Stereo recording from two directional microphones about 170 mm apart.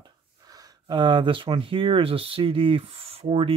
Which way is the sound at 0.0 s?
20° right (ahead or behind).